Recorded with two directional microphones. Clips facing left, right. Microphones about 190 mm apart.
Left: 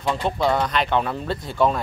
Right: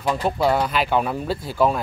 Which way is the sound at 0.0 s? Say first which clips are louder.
Right 1 dB; 5° right (ahead or behind).